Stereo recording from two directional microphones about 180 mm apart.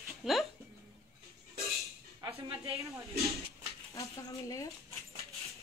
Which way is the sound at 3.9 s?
15° left (ahead or behind).